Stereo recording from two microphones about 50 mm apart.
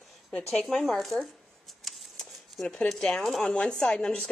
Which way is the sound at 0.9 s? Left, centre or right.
Centre.